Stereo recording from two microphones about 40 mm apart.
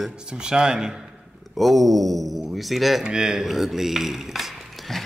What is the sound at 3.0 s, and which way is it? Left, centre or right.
Speech, centre.